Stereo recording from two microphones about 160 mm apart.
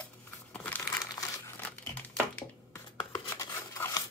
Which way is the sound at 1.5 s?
10° left (ahead or behind).